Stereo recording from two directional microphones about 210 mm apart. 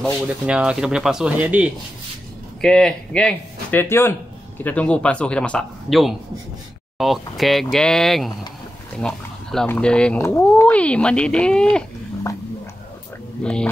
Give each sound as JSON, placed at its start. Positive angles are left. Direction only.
{"t": 0.5, "sound": "speech", "side_deg": -5}
{"t": 13.4, "sound": "speech", "side_deg": 5}